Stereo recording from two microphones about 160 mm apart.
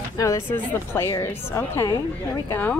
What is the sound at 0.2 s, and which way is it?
Speech, 15° left (ahead or behind).